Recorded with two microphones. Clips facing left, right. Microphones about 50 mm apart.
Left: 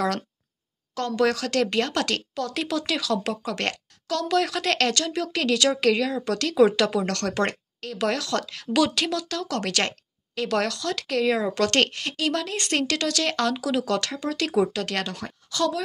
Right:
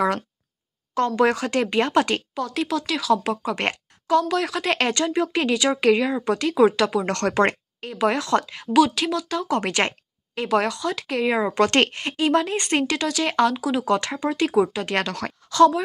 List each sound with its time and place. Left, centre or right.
0.9 s speech: right
2.4 s speech: centre; by 4.3 s right
4.3 s speech: centre
4.7 s speech: right
7.1 s speech: right
8.7 s speech: centre
14.5 s speech: centre
15.0 s speech: right
15.5 s a woman's voice: right